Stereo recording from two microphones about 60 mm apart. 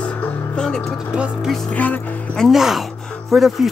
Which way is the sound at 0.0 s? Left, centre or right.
Centre.